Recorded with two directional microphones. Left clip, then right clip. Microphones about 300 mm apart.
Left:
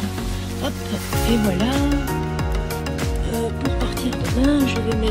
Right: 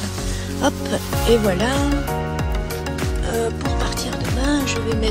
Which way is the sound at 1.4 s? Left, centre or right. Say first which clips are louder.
Right 2 dB; centre.